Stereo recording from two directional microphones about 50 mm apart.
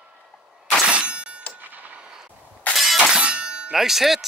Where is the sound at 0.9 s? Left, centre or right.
Right.